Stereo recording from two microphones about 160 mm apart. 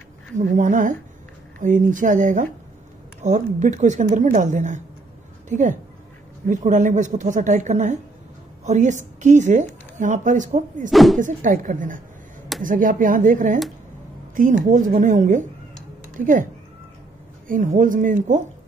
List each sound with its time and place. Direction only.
0.6 s a woman's voice: 50° right (ahead or behind)
10.9 s speech: centre (ahead or behind)
11.1 s a woman's voice: 55° right (ahead or behind)
17.5 s speech: 55° right (ahead or behind)